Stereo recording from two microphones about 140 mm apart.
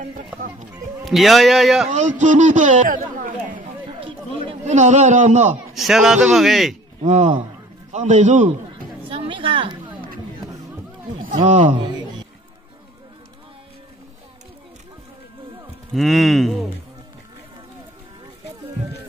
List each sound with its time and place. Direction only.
1.0 s a man's voice: centre (ahead or behind)
1.9 s a man's voice: 60° right (ahead or behind); by 3.6 s 75° right (ahead or behind)
4.6 s a man's voice: 55° right (ahead or behind)
5.8 s a man's voice: centre (ahead or behind)
7.0 s a man's voice: 55° right (ahead or behind)
9.1 s a sound: 40° right (ahead or behind)
11.2 s speech: 60° right (ahead or behind)
15.9 s a man's voice: centre (ahead or behind)